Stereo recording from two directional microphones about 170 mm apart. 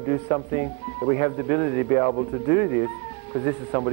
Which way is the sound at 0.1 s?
35° left (ahead or behind).